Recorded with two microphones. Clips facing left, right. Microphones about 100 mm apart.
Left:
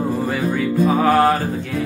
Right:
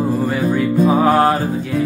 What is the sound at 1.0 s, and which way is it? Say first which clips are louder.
Music: even; 15° right (ahead or behind).